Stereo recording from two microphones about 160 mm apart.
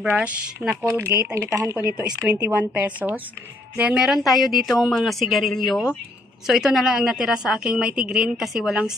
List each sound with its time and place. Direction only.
0.0 s a woman's voice: 5° right (ahead or behind)